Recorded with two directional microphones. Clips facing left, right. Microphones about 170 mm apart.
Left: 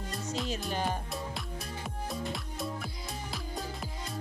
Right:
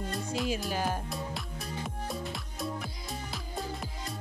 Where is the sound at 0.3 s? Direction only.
5° right (ahead or behind).